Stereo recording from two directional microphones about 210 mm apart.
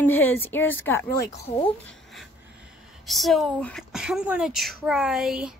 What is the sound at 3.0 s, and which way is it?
Speech, centre (ahead or behind).